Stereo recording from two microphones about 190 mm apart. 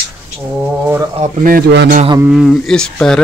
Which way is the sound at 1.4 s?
55° right (ahead or behind).